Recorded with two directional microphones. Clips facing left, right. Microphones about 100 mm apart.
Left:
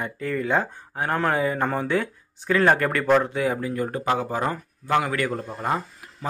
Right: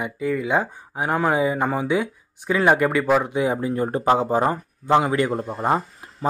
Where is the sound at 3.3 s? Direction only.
20° right (ahead or behind).